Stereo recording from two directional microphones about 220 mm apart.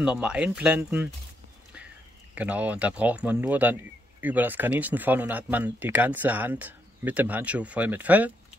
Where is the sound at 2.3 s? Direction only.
5° right (ahead or behind).